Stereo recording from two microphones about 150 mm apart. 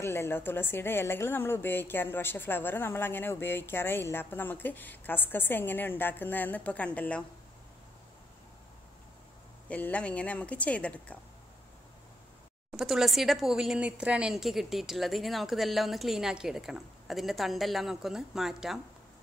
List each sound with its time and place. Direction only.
0.0 s a woman's voice: 15° left (ahead or behind)
9.7 s a woman's voice: 10° left (ahead or behind)
12.7 s speech: centre (ahead or behind)